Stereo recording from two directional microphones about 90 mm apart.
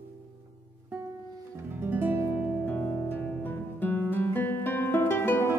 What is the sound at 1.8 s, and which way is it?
Music, 20° right (ahead or behind).